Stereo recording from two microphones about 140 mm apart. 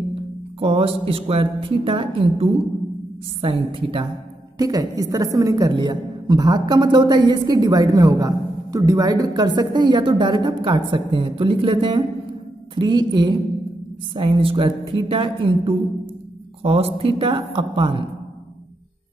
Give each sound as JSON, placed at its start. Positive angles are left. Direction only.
{"t": 0.6, "sound": "a woman's voice", "side_deg": -40}
{"t": 4.6, "sound": "a woman's voice", "side_deg": -25}